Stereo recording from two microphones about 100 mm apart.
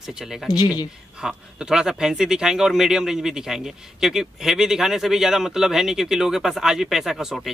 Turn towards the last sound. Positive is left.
turn(degrees=-5)  # may be behind; listen again after turning